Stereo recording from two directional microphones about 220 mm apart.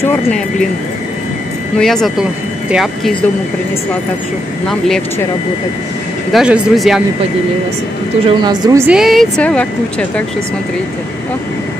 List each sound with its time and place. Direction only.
1.8 s a woman's voice: centre (ahead or behind)
4.6 s a woman's voice: centre (ahead or behind)
6.3 s a woman's voice: 5° right (ahead or behind)
8.3 s a woman's voice: 20° right (ahead or behind)
8.8 s a woman's voice: centre (ahead or behind)